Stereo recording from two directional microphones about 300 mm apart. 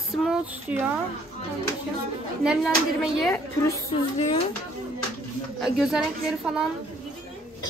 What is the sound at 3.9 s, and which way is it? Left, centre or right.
Speech, centre.